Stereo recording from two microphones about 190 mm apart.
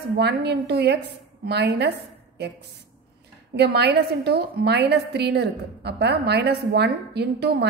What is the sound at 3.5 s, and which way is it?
A woman's voice, 60° right (ahead or behind).